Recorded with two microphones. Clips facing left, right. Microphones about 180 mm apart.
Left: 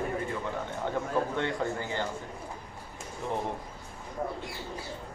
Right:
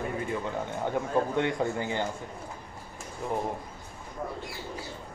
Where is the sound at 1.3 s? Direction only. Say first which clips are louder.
Right 3 dB; 15° right (ahead or behind).